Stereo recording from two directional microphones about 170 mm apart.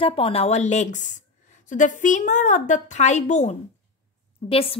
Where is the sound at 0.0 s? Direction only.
30° left (ahead or behind).